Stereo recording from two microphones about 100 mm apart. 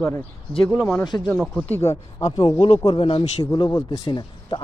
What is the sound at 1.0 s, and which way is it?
Speech, 50° left (ahead or behind).